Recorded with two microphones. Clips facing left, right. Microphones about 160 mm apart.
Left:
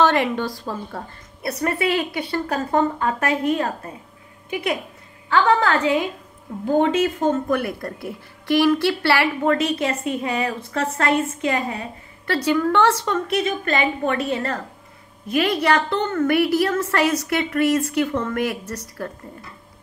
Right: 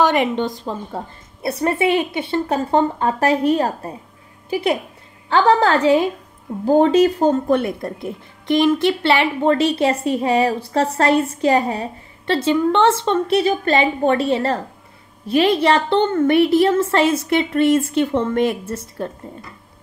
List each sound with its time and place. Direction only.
0.0 s a woman's voice: 20° right (ahead or behind)